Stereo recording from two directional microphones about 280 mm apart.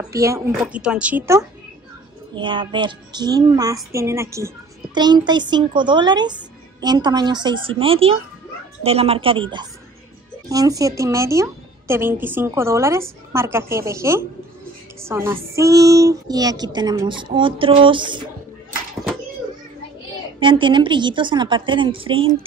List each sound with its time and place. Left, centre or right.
0.1 s a woman's voice: centre
20.3 s a woman's voice: centre